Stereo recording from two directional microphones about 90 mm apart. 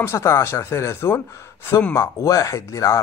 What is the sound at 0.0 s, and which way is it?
Speech, 30° left (ahead or behind).